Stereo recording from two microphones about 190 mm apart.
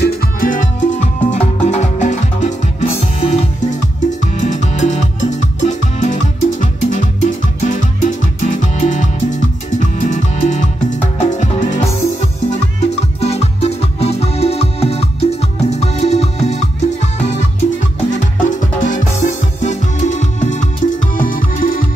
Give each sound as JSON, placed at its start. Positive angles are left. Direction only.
{"t": 0.0, "sound": "music", "side_deg": 55}